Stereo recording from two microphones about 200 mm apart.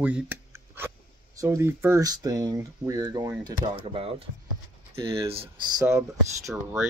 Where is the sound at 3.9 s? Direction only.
30° right (ahead or behind).